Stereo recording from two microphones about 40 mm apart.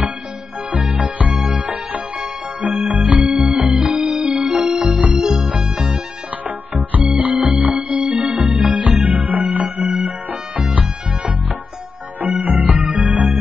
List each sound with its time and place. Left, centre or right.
0.9 s music: right
1.9 s music: right
3.6 s organ: centre
3.9 s music: right
4.9 s organ: right
5.2 s music: centre
6.4 s music: right
8.3 s music: right
8.6 s music: right
12.2 s music: right